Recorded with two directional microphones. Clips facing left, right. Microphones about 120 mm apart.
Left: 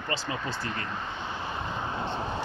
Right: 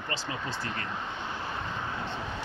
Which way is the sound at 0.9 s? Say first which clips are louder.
Left 1 dB; 5° right (ahead or behind).